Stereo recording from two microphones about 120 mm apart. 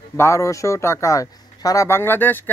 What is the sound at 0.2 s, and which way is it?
Speech, 25° left (ahead or behind).